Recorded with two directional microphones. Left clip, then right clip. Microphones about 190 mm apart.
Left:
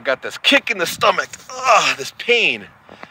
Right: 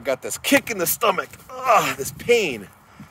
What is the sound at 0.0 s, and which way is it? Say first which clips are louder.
Speech: left 7 dB; 10° right (ahead or behind).